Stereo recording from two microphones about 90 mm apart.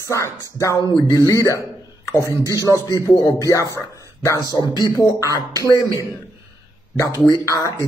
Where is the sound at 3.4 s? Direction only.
40° left (ahead or behind).